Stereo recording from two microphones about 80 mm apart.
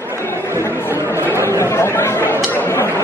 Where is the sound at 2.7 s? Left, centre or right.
Left.